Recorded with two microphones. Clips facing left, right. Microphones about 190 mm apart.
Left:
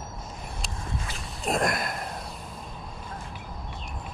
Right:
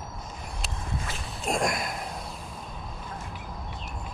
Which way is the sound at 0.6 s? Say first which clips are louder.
Right 1 dB; centre (ahead or behind).